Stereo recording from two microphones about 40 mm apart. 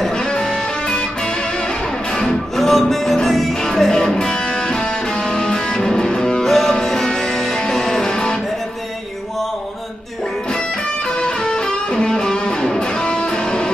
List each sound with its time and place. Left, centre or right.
0.2 s music: centre
2.1 s music: centre
11.1 s music: left